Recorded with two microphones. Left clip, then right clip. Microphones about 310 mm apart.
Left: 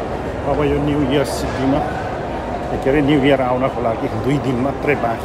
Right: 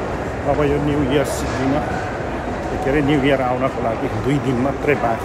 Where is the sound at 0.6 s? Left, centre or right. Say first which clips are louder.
Left 2 dB; centre.